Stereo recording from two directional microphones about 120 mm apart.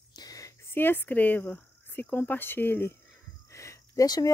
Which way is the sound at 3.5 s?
25° left (ahead or behind).